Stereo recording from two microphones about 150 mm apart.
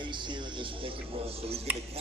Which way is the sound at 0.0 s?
30° right (ahead or behind).